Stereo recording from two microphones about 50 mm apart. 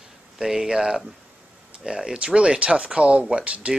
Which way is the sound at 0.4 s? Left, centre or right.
Centre.